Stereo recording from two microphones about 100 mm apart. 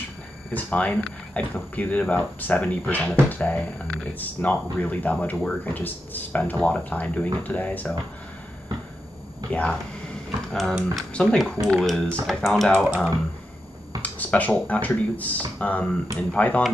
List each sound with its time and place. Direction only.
0.5 s speech: 15° left (ahead or behind)
9.5 s speech: 10° left (ahead or behind)
14.0 s speech: 15° left (ahead or behind)